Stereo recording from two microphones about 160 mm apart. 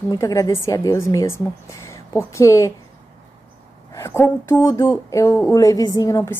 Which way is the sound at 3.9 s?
20° left (ahead or behind).